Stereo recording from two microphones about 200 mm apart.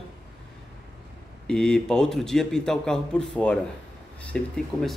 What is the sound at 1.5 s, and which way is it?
Speech, 5° left (ahead or behind).